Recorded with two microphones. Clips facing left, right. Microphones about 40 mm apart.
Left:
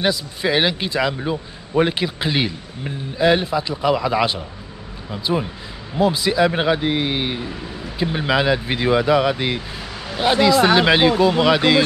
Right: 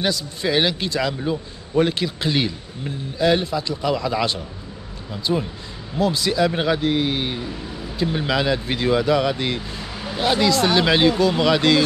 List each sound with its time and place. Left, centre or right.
0.0 s a man's voice: centre